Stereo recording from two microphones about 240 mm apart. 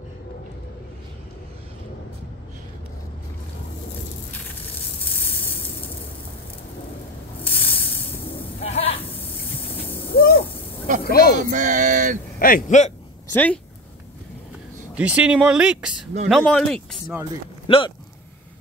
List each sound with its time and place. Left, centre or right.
4.3 s sizzle: centre
7.6 s hiss: centre
8.6 s a sound: left
10.1 s owl: left
11.1 s speech: left
11.3 s a sound: right
12.4 s speech: left
13.3 s speech: centre
15.0 s speech: centre
17.6 s speech: left